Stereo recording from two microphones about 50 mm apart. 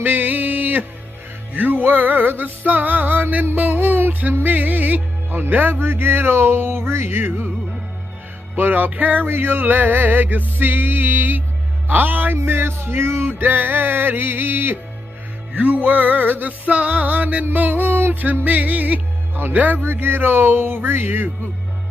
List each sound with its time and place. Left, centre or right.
0.0 s music: right
8.5 s music: right
9.3 s music: right
12.4 s music: right
15.5 s music: right
19.8 s music: right